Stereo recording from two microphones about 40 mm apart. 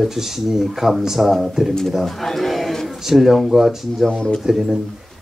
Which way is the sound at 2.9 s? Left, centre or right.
Centre.